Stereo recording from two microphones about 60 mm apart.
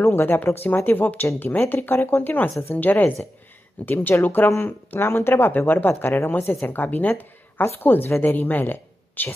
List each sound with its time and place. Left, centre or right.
0.0 s speech: left